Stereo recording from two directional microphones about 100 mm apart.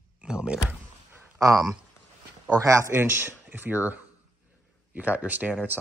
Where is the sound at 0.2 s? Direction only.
10° right (ahead or behind).